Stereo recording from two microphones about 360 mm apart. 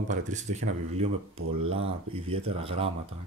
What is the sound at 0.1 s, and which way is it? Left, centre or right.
Speech, centre.